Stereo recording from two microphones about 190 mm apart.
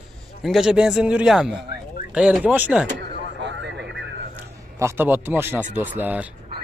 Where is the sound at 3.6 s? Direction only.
70° right (ahead or behind).